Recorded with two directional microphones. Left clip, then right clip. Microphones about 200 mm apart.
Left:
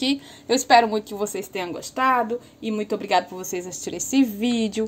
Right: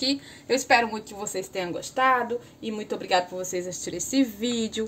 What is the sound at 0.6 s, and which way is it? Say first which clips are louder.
A woman's voice: left 7 dB; 35° left (ahead or behind).